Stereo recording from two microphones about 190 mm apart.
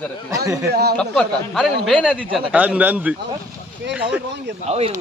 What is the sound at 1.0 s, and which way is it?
Speech, centre (ahead or behind).